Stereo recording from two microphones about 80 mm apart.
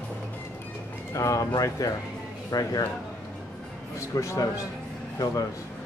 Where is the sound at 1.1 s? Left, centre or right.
Left.